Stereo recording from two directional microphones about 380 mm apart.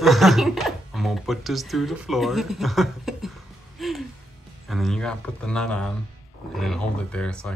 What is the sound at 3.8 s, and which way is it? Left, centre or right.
Music, centre.